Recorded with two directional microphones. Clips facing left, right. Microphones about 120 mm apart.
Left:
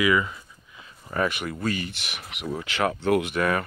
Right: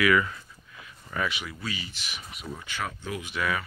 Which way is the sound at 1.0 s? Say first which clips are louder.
Left 5 dB; 45° left (ahead or behind).